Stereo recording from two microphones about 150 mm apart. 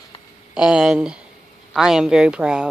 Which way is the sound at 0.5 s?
5° right (ahead or behind).